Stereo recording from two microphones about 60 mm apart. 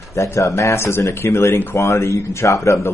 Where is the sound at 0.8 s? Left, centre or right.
Left.